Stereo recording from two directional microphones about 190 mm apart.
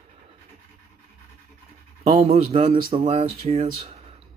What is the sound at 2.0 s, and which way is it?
Speech, 35° right (ahead or behind).